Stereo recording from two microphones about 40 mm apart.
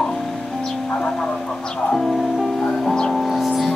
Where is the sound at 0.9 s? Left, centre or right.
Centre.